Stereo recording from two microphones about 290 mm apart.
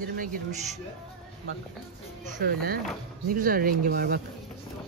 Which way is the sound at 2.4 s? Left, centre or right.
Right.